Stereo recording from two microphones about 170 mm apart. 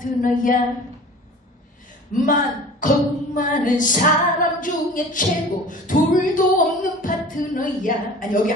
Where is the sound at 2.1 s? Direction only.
50° left (ahead or behind).